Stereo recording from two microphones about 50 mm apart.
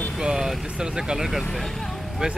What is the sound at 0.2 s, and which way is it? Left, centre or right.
Speech, centre.